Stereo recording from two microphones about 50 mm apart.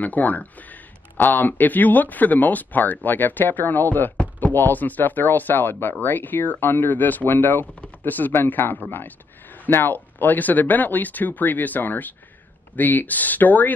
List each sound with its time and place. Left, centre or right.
0.0 s speech: left